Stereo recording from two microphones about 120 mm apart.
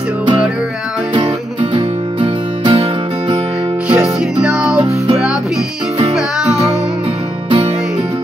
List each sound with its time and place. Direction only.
1.8 s music: 40° right (ahead or behind)
3.9 s music: 10° right (ahead or behind)
4.7 s music: 60° right (ahead or behind)
7.4 s music: 55° right (ahead or behind)